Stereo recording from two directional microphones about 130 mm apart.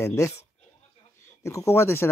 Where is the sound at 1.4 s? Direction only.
20° left (ahead or behind).